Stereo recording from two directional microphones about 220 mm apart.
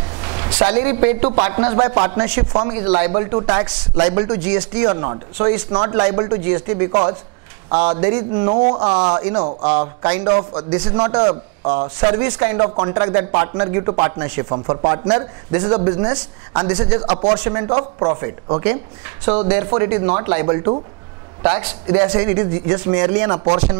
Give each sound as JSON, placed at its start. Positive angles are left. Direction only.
{"t": 0.2, "sound": "a man's voice", "side_deg": -20}
{"t": 21.9, "sound": "a man's voice", "side_deg": -20}